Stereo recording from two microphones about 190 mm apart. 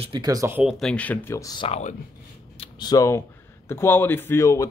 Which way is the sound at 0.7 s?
5° left (ahead or behind).